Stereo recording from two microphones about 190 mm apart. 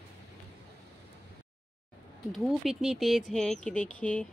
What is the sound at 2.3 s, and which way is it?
A woman's voice, centre (ahead or behind).